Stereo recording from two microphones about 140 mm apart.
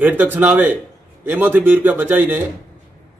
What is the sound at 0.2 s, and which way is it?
A man's voice, 10° right (ahead or behind).